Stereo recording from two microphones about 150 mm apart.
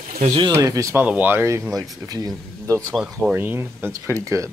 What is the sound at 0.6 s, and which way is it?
Speech, 25° right (ahead or behind).